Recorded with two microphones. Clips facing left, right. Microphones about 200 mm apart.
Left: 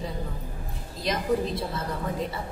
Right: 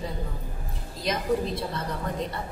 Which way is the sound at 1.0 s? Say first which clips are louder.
Even; centre (ahead or behind).